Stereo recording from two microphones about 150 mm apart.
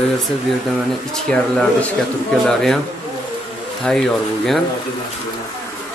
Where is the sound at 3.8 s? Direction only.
5° left (ahead or behind).